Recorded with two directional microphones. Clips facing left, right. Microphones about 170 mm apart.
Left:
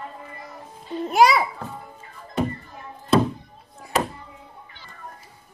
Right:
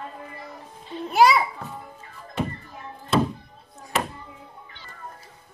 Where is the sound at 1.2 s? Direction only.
Centre (ahead or behind).